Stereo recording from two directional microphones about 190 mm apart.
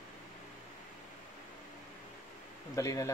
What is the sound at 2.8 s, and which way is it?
Speech, 15° left (ahead or behind).